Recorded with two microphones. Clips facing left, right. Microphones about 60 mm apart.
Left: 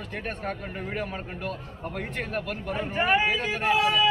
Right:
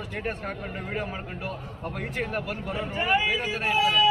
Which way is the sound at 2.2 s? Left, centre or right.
Centre.